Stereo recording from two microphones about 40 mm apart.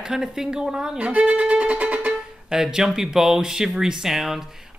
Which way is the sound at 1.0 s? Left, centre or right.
Right.